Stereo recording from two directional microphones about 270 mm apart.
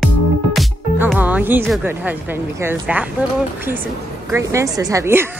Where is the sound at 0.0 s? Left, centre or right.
Centre.